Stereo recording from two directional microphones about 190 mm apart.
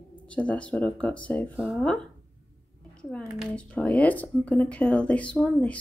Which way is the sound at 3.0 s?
5° left (ahead or behind).